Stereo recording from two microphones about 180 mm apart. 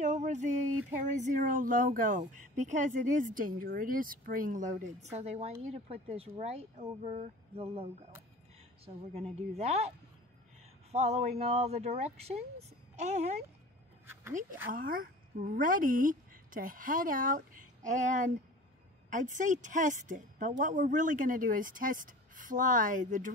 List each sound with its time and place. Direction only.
0.0 s a sound: 40° right (ahead or behind)
1.1 s a woman's voice: 45° right (ahead or behind)
14.7 s a woman's voice: 50° right (ahead or behind)